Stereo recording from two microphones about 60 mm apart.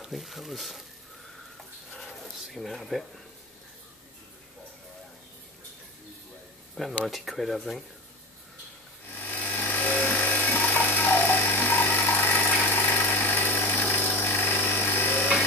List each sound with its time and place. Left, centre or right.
0.0 s speech: centre
2.5 s speech: centre
7.1 s speech: centre
9.1 s a sound: left